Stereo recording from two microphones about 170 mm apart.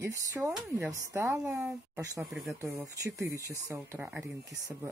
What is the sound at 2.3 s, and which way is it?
Speech, centre (ahead or behind).